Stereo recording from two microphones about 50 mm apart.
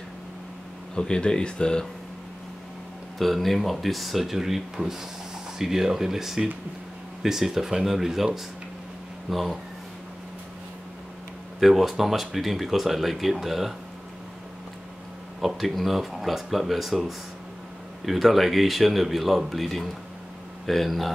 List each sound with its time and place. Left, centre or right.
0.9 s speech: centre
3.2 s speech: centre
9.3 s speech: centre
11.6 s speech: centre
15.4 s speech: centre